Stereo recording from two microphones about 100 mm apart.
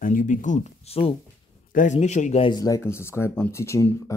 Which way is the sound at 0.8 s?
80° left.